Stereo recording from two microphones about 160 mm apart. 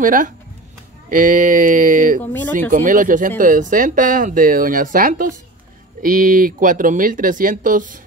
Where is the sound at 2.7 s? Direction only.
55° right (ahead or behind).